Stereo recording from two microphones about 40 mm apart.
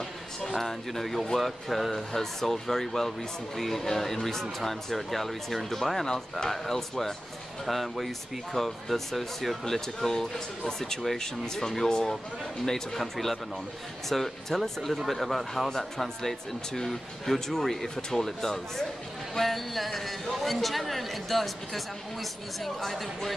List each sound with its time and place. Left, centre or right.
0.4 s a man's voice: centre